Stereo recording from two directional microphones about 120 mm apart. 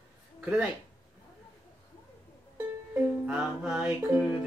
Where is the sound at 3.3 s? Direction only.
10° right (ahead or behind).